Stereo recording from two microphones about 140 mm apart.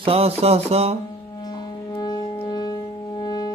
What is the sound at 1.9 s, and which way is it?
Music, 30° left (ahead or behind).